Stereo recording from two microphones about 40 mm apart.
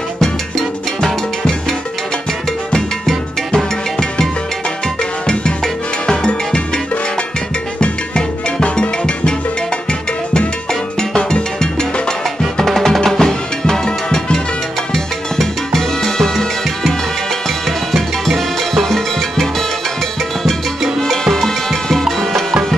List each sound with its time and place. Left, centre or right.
0.2 s music: centre
5.2 s music: centre
7.8 s music: left
21.0 s music: centre